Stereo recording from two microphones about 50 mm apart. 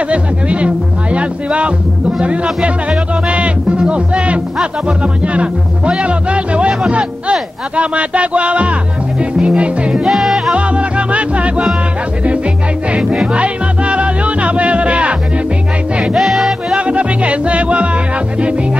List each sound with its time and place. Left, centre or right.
0.1 s speech: right
10.0 s music: centre
10.5 s music: right
12.9 s music: centre
16.2 s music: centre
16.7 s music: right